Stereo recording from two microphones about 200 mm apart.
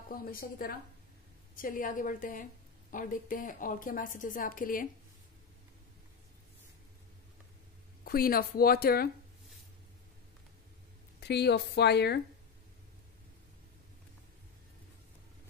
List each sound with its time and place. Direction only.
0.1 s a woman's voice: 45° left (ahead or behind)
8.0 s a woman's voice: 45° left (ahead or behind)
11.1 s speech: 55° left (ahead or behind)